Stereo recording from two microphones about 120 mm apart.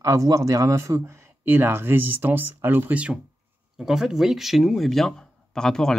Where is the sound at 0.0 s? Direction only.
25° right (ahead or behind).